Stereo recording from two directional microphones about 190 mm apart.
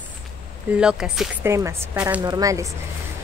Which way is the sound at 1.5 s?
15° right (ahead or behind).